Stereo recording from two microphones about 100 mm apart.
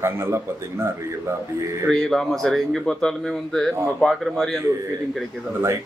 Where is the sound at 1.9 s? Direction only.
5° left (ahead or behind).